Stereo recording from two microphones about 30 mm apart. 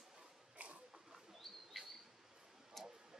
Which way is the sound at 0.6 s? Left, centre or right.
Right.